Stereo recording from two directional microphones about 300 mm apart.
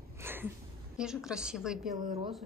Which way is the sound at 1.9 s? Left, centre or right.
Centre.